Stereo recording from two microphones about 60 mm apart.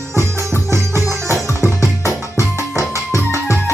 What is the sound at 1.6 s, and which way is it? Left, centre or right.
Music, left.